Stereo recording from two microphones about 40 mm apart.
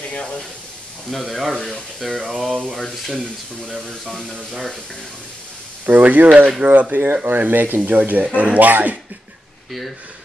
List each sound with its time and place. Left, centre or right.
1.1 s speech: centre
5.9 s speech: right
8.0 s speech: right
9.7 s speech: centre